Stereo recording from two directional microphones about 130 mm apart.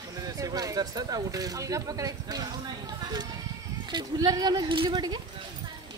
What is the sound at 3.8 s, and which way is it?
Speech, 30° right (ahead or behind).